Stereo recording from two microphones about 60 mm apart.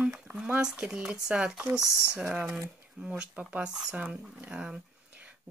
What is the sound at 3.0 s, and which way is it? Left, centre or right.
Speech, centre.